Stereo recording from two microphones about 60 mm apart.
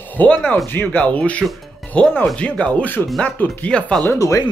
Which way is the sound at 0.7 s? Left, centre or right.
Left.